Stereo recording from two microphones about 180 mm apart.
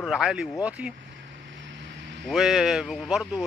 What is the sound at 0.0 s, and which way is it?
Speech, 5° right (ahead or behind).